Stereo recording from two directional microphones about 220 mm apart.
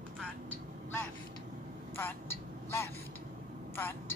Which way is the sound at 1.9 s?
10° left (ahead or behind).